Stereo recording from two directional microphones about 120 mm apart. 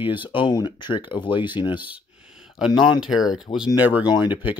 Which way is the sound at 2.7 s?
40° left (ahead or behind).